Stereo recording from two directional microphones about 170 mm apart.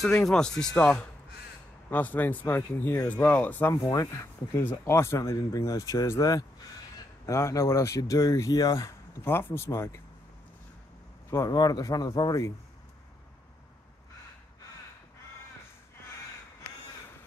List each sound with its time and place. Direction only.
0.0 s speech: 5° left (ahead or behind)
3.7 s speech: 20° left (ahead or behind)
11.2 s speech: 20° left (ahead or behind)